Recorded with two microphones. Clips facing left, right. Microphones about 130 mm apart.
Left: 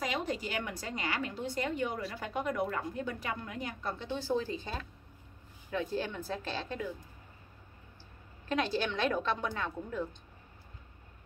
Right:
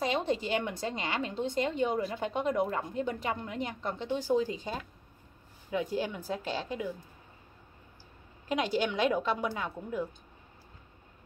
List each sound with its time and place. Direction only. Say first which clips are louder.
0.0 s a woman's voice: right 5 dB; 25° right (ahead or behind)
8.5 s a woman's voice: right 2 dB; 15° right (ahead or behind)